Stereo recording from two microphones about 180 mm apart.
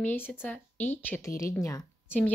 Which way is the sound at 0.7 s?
40° left (ahead or behind).